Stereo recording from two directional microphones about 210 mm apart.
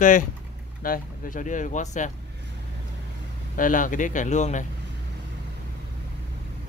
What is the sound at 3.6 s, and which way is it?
A man's voice, 40° left (ahead or behind).